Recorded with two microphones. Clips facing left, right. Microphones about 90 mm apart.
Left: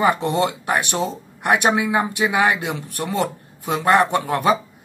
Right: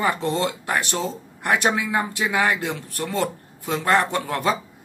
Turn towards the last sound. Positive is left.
turn(degrees=15)  # may be behind; listen again after turning